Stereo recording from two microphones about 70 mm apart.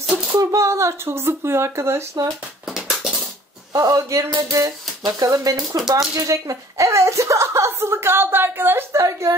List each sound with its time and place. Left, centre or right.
0.4 s speech: right
2.6 s a sound: centre
3.7 s a woman's voice: right
5.0 s a woman's voice: right
8.9 s a woman's voice: right